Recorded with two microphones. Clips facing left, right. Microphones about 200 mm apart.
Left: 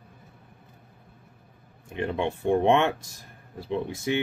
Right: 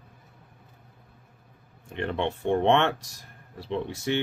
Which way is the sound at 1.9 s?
15° left (ahead or behind).